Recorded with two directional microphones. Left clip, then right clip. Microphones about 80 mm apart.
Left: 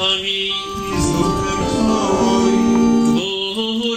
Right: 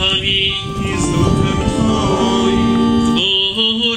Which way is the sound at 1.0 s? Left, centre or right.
Right.